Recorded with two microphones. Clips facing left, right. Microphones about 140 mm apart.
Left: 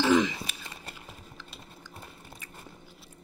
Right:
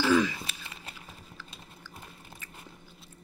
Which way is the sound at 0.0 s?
20° left (ahead or behind).